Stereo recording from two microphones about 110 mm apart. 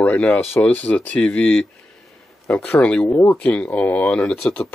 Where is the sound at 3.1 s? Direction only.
25° left (ahead or behind).